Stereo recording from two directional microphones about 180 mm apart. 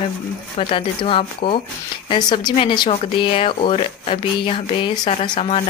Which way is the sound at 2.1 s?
25° left (ahead or behind).